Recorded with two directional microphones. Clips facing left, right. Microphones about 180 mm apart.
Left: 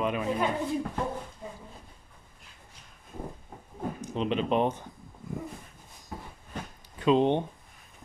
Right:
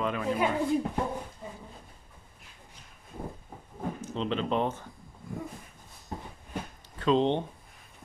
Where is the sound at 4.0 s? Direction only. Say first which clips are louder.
Left 3 dB; 15° left (ahead or behind).